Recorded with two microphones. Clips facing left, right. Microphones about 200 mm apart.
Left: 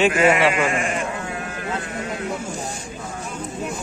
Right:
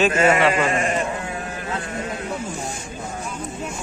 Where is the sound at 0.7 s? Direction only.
40° right (ahead or behind).